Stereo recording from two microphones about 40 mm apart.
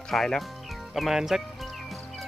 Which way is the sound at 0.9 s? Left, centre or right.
Centre.